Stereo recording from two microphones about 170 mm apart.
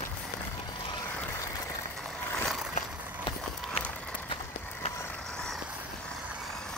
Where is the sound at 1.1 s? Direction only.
10° left (ahead or behind).